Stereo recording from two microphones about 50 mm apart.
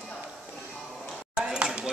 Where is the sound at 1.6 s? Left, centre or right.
Centre.